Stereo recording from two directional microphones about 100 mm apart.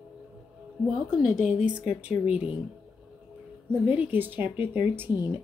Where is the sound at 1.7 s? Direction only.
10° right (ahead or behind).